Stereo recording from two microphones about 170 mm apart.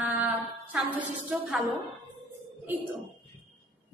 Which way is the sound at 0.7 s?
10° right (ahead or behind).